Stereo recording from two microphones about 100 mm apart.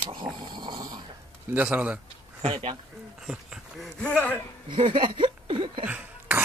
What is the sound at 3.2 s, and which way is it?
Speech, 5° right (ahead or behind).